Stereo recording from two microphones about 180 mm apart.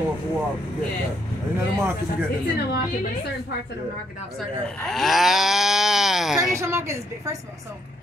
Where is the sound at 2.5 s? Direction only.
60° left (ahead or behind).